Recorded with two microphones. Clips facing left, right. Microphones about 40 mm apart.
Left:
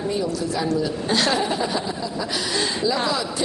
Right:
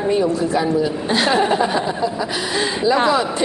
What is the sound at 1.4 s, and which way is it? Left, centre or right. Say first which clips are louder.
A woman's voice: right 6 dB; right.